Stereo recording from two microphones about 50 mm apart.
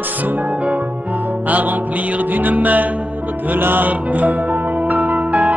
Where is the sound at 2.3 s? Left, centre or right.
Right.